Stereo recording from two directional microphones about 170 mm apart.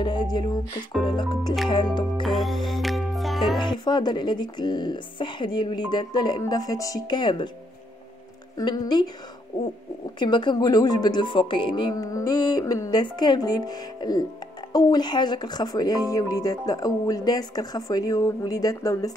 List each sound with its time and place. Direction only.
0.0 s speech: 25° left (ahead or behind)
1.7 s music: 25° left (ahead or behind)
2.2 s music: centre (ahead or behind)
3.5 s speech: 25° left (ahead or behind)
8.5 s speech: 25° left (ahead or behind)
10.1 s speech: 25° left (ahead or behind)